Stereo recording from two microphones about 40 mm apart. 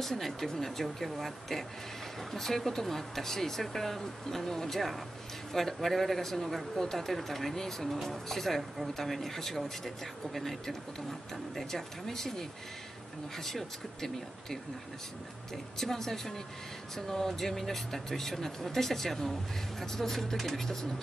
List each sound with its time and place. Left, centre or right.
0.0 s speech: centre